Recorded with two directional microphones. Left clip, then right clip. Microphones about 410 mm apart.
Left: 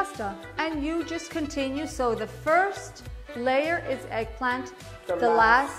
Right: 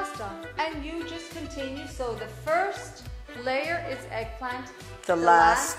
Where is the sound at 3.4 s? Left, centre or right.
Left.